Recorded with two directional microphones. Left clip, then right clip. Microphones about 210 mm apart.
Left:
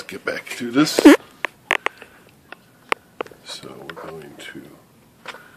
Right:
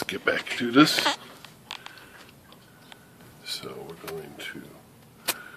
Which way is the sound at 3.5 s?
20° left (ahead or behind).